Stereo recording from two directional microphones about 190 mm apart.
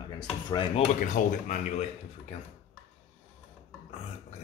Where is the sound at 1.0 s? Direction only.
40° left (ahead or behind).